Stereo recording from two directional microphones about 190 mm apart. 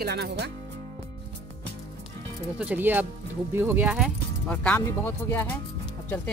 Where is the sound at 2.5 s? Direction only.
10° right (ahead or behind).